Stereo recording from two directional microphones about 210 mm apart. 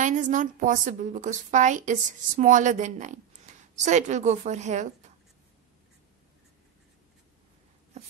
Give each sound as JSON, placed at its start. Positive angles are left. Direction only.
{"t": 0.0, "sound": "a woman's voice", "side_deg": -35}
{"t": 8.0, "sound": "writing", "side_deg": -30}